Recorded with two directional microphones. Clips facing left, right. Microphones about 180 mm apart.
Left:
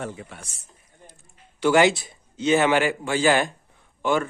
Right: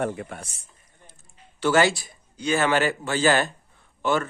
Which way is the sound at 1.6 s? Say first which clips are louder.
Left 2 dB; 15° left (ahead or behind).